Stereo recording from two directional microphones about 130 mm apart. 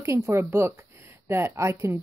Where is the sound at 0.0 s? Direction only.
25° right (ahead or behind).